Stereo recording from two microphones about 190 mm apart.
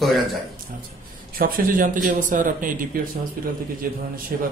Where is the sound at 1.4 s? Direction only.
50° right (ahead or behind).